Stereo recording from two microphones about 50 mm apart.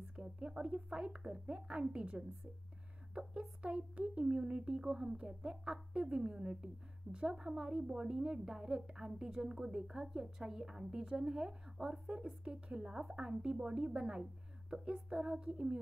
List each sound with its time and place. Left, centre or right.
0.1 s a woman's voice: centre